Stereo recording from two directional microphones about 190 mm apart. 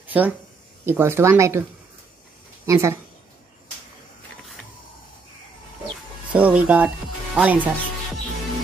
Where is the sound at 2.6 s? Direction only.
15° right (ahead or behind).